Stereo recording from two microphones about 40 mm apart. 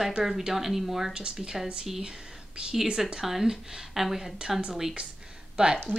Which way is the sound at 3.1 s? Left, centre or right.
Centre.